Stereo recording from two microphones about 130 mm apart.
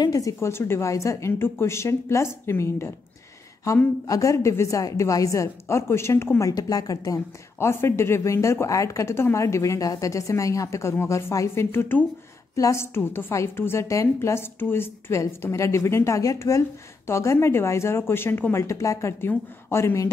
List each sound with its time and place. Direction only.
0.0 s a woman's voice: 25° left (ahead or behind)